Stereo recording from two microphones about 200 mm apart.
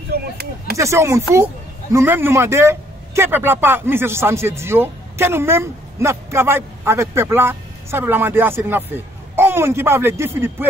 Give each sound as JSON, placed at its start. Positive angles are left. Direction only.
{"t": 0.1, "sound": "speech", "side_deg": -50}
{"t": 0.7, "sound": "a man's voice", "side_deg": -15}